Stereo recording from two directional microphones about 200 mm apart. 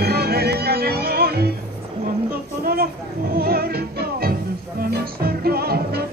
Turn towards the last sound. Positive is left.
turn(degrees=-50)  # may be behind; listen again after turning